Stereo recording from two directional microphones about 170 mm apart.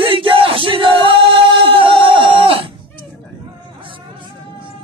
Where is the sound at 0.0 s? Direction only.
30° right (ahead or behind).